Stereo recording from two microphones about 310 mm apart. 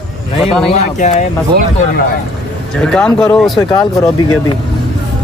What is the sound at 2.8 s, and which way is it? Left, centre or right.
Speech, centre.